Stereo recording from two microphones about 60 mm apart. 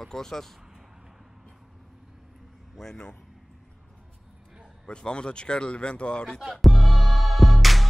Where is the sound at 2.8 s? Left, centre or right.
Centre.